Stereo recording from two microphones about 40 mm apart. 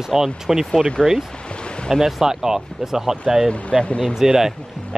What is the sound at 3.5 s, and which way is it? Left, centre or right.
Speech, left.